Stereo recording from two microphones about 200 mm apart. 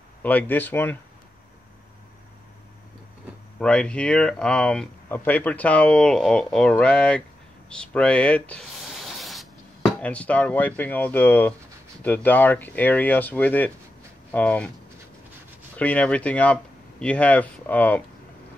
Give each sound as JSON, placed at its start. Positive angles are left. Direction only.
{"t": 0.2, "sound": "speech", "side_deg": 10}
{"t": 3.5, "sound": "speech", "side_deg": 5}
{"t": 15.8, "sound": "speech", "side_deg": 5}